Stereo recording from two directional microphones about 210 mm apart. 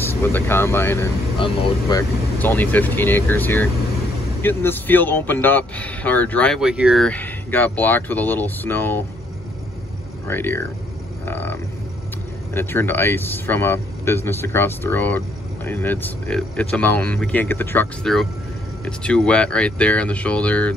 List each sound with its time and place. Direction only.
0.0 s speech: 10° left (ahead or behind)
2.3 s speech: 10° left (ahead or behind)
10.2 s speech: 10° left (ahead or behind)
11.2 s livestock: 10° left (ahead or behind)
12.5 s speech: 10° left (ahead or behind)